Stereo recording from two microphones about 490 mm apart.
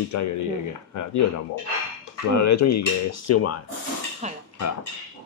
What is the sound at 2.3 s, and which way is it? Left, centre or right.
Speech, left.